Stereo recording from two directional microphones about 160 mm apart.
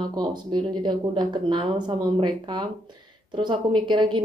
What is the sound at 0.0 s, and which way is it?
Speech, 25° right (ahead or behind).